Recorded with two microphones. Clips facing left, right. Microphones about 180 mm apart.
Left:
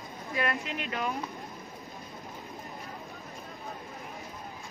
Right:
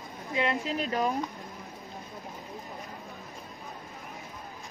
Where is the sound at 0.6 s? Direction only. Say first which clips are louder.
Right 5 dB; 35° right (ahead or behind).